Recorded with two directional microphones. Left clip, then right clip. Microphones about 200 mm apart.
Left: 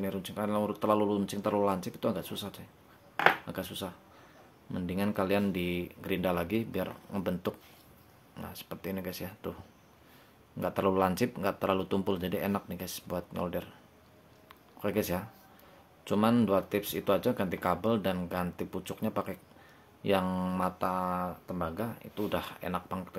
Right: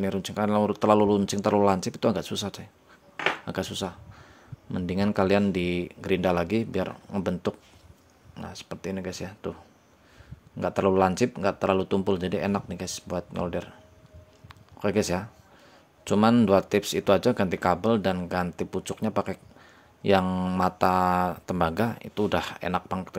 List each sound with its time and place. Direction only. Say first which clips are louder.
0.0 s speech: right 7 dB; 30° right (ahead or behind)
10.6 s speech: right 6 dB; 20° right (ahead or behind)
14.5 s a sound: right 6 dB; 25° right (ahead or behind)
16.0 s speech: right 6 dB; 30° right (ahead or behind)